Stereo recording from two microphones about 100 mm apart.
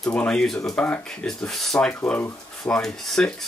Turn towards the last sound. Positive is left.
turn(degrees=5)  # may be behind; listen again after turning